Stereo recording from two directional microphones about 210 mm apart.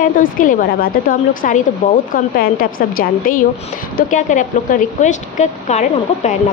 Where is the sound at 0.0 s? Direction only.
40° left (ahead or behind).